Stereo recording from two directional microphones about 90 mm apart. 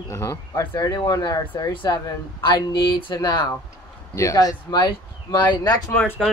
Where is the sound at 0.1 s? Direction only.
35° left (ahead or behind).